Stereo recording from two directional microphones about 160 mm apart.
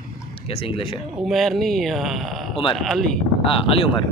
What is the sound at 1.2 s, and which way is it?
Speech, centre (ahead or behind).